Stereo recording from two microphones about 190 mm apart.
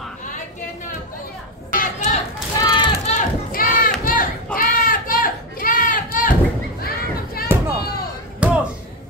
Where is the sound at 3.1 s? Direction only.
45° left (ahead or behind).